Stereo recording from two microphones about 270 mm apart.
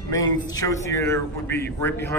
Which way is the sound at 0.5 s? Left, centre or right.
Centre.